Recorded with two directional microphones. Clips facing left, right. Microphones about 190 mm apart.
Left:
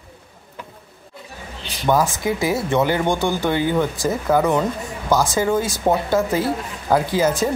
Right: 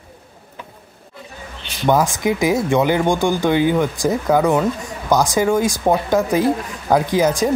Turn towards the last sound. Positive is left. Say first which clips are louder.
# right 2 dB
turn(degrees=-15)  # may be behind; listen again after turning